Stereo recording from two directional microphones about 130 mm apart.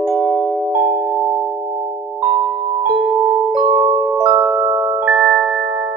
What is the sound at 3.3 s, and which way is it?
Music, 45° right (ahead or behind).